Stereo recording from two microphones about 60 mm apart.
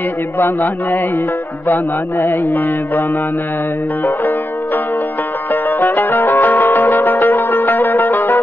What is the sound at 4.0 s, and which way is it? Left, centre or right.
Music, left.